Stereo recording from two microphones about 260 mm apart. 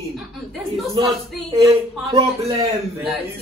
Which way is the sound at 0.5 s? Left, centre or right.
Centre.